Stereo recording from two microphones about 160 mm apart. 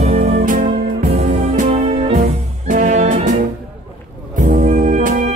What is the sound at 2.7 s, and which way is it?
Music, 45° right (ahead or behind).